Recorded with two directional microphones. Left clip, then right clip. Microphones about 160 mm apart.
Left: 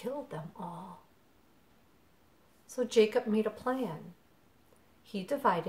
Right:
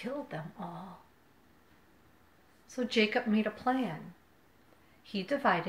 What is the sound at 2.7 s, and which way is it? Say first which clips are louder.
A woman's voice: left 3 dB; 30° left (ahead or behind).